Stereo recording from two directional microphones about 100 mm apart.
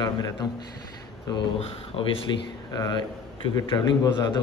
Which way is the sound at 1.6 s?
75° left (ahead or behind).